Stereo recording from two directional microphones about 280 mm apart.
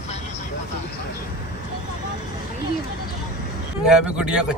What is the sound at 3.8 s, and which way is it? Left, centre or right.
Speech, centre.